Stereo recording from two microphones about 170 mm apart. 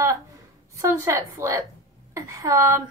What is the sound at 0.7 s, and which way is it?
A woman's voice, 20° right (ahead or behind).